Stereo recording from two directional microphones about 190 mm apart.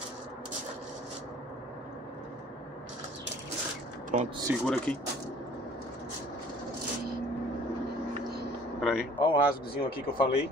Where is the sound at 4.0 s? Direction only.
40° right (ahead or behind).